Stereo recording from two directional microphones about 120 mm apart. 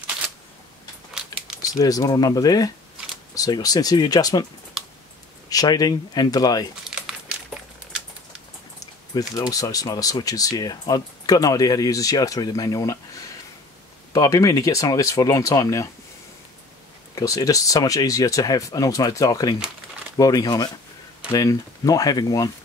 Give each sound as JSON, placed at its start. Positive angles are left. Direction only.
{"t": 1.7, "sound": "speech", "side_deg": 30}
{"t": 5.5, "sound": "speech", "side_deg": 30}
{"t": 6.9, "sound": "a sound", "side_deg": -5}
{"t": 9.3, "sound": "speech", "side_deg": 30}
{"t": 14.1, "sound": "speech", "side_deg": 30}
{"t": 17.1, "sound": "speech", "side_deg": 30}